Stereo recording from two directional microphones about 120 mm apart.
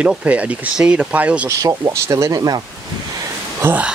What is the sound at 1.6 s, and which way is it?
Speech, 25° right (ahead or behind).